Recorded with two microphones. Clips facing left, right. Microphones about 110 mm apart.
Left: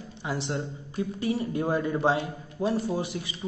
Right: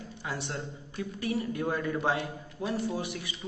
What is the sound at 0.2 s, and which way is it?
A man's voice, 20° left (ahead or behind).